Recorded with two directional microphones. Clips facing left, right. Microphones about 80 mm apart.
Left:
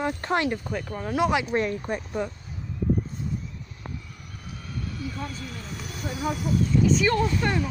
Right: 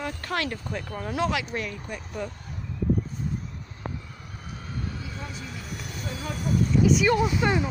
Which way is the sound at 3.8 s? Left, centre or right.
Right.